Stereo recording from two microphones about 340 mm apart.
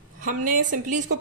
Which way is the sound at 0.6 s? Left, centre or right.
Right.